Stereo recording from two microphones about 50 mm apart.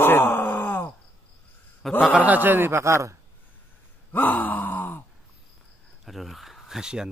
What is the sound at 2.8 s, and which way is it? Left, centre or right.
Speech, right.